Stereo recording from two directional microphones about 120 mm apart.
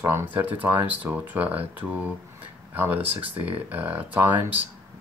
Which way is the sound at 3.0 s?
55° right (ahead or behind).